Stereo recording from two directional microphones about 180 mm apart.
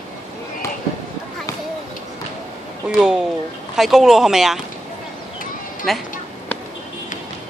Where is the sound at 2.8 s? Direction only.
5° right (ahead or behind).